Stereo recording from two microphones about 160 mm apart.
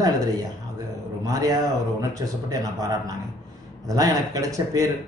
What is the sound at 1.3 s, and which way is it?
Speech, 20° right (ahead or behind).